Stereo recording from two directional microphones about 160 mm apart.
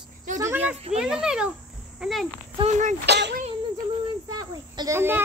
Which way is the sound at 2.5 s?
45° right (ahead or behind).